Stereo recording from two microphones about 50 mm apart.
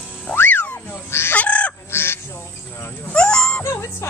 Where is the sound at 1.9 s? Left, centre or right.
Left.